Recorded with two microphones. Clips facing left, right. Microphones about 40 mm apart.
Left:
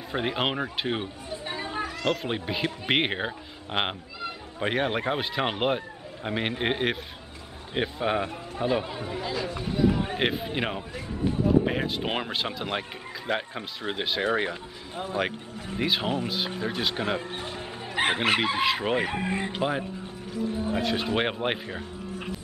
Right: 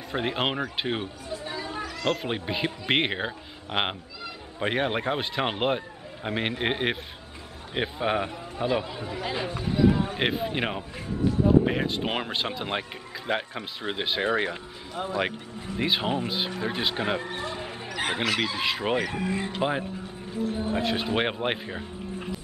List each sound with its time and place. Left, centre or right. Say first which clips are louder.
0.1 s speech: even; centre
1.3 s a sound: even; left
2.0 s speech: right 1 dB; centre
9.2 s speech: right 2 dB; right
9.6 s speech: right 3 dB; centre
15.8 s speech: right 1 dB; centre
17.3 s speech: right 2 dB; centre
17.9 s speech: left 3 dB; left
18.6 s speech: left 2 dB; centre
18.9 s speech: even; left
20.7 s speech: even; centre